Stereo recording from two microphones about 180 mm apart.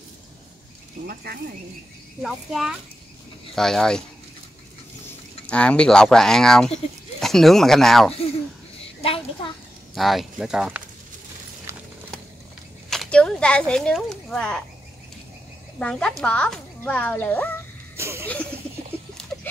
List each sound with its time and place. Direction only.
1.0 s speech: 55° right (ahead or behind)
2.2 s speech: centre (ahead or behind)
5.5 s speech: 5° left (ahead or behind)
9.0 s a child's voice: 30° left (ahead or behind)
9.9 s speech: centre (ahead or behind)
11.7 s a sound: 15° right (ahead or behind)
12.9 s speech: 5° left (ahead or behind)
15.8 s speech: 5° left (ahead or behind)
17.9 s a sound: 15° right (ahead or behind)